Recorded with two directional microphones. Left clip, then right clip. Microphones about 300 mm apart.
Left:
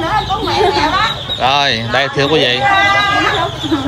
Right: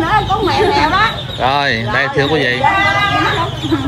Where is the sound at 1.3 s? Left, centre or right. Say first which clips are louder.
Left 2 dB; centre.